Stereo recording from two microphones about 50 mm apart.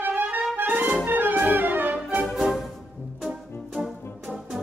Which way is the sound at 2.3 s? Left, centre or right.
Centre.